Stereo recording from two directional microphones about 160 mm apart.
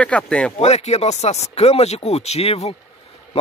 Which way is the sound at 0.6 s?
45° left (ahead or behind).